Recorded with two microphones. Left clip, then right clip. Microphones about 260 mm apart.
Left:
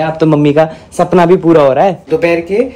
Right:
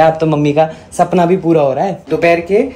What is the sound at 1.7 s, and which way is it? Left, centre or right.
Speech, left.